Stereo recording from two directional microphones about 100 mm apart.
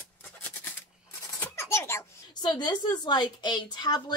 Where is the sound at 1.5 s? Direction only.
25° left (ahead or behind).